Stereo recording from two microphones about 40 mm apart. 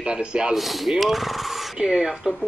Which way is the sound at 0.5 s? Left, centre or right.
Centre.